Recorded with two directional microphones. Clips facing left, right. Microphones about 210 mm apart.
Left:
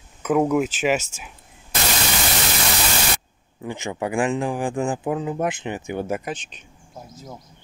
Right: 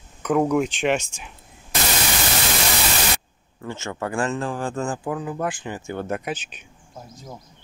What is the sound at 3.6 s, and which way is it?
Speech, 15° left (ahead or behind).